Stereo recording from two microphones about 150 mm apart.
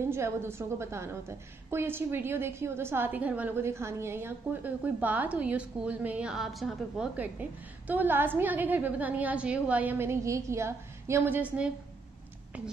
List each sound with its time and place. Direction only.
0.0 s a woman's voice: 15° right (ahead or behind)